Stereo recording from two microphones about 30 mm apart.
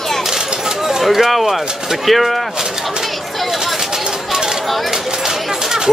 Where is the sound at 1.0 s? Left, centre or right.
Centre.